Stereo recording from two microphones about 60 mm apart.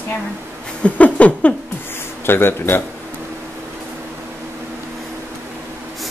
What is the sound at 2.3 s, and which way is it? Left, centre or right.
Speech, left.